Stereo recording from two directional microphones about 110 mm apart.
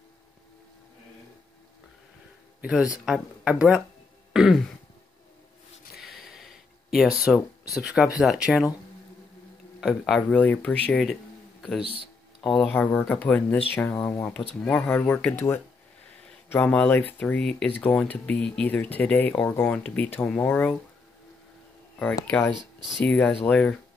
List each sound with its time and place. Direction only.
2.6 s speech: 5° right (ahead or behind)
4.3 s throat clearing: 5° right (ahead or behind)
5.9 s a sound: centre (ahead or behind)
7.7 s speech: centre (ahead or behind)
9.8 s speech: centre (ahead or behind)
10.3 s speech: 15° left (ahead or behind)
11.8 s speech: 55° right (ahead or behind)
12.4 s speech: 10° left (ahead or behind)
14.5 s speech: 5° left (ahead or behind)
15.0 s speech: 20° left (ahead or behind)
17.6 s speech: 15° left (ahead or behind)
23.0 s speech: 5° left (ahead or behind)